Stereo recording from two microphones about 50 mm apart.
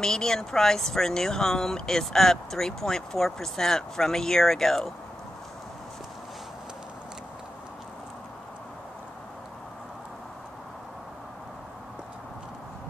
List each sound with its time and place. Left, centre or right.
0.0 s speech: centre